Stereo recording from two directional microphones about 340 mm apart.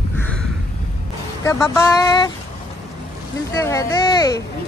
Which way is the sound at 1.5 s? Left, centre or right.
Centre.